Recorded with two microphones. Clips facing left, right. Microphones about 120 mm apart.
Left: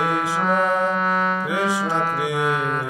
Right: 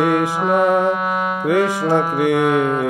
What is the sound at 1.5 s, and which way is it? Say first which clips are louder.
Music: right 6 dB; 55° right (ahead or behind).